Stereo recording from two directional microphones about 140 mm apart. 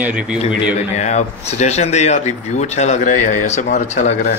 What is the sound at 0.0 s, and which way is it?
Speech, 10° right (ahead or behind).